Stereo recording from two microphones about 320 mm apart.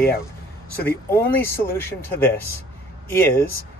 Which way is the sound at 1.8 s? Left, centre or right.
Centre.